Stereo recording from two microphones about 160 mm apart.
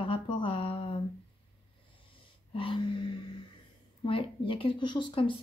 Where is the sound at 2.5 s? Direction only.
35° left (ahead or behind).